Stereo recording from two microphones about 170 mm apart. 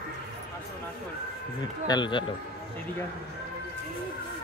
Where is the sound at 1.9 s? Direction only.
25° left (ahead or behind).